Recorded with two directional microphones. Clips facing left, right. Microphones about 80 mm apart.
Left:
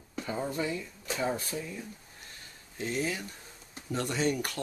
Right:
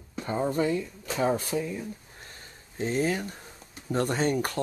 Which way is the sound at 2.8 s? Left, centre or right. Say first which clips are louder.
Right 6 dB; right.